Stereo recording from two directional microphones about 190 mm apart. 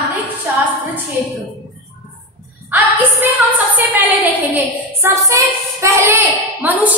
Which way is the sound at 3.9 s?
10° right (ahead or behind).